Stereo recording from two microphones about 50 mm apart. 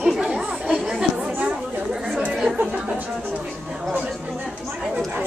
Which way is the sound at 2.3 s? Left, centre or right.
Centre.